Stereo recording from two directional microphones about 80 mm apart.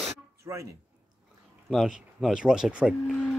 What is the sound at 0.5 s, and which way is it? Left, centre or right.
Speech, right.